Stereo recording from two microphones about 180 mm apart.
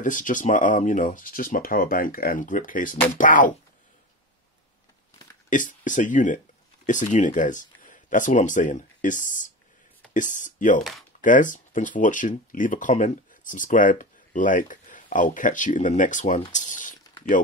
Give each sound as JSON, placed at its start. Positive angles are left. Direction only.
{"t": 0.0, "sound": "speech", "side_deg": 45}
{"t": 5.5, "sound": "speech", "side_deg": 45}
{"t": 10.8, "sound": "speech", "side_deg": 0}
{"t": 11.1, "sound": "speech", "side_deg": 45}